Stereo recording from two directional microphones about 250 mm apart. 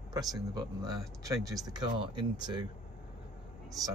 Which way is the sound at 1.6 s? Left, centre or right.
Centre.